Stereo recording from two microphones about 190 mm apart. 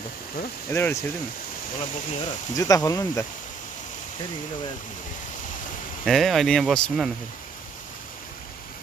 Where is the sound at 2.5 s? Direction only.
20° left (ahead or behind).